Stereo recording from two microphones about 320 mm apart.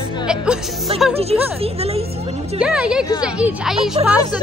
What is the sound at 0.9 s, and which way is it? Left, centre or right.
Speech, centre.